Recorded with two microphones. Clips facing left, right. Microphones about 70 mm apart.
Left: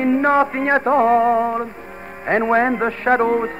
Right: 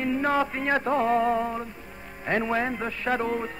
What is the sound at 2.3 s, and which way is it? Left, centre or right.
Speech, left.